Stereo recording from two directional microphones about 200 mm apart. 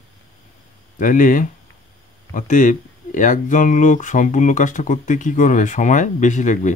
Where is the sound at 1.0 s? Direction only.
40° left (ahead or behind).